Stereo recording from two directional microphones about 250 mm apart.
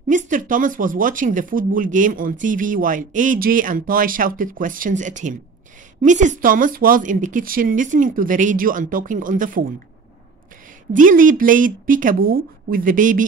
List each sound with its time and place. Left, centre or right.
0.1 s speech: right
10.9 s speech: right